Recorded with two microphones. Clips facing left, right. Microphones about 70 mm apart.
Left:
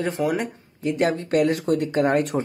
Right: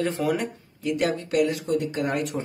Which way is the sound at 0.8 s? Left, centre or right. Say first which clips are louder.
Left 3 dB; left.